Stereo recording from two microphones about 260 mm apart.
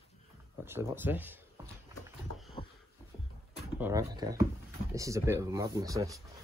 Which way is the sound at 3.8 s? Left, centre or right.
Centre.